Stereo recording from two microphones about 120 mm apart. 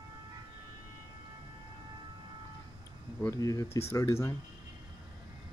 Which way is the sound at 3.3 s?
30° left (ahead or behind).